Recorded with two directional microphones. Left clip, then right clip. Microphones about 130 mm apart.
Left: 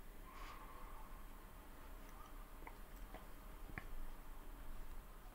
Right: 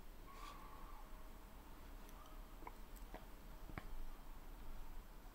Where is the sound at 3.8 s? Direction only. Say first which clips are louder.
Left 2 dB; 20° right (ahead or behind).